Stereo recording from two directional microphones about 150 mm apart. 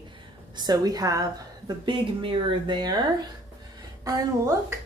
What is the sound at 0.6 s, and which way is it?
A woman's voice, 25° right (ahead or behind).